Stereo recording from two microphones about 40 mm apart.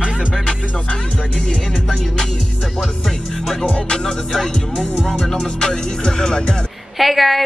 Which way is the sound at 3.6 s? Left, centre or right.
Left.